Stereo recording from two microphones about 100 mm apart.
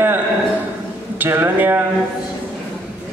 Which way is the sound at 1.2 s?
20° right (ahead or behind).